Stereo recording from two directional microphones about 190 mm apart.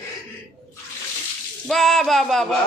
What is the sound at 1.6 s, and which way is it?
Speech, centre (ahead or behind).